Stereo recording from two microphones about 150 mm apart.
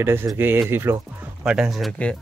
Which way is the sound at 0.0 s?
15° right (ahead or behind).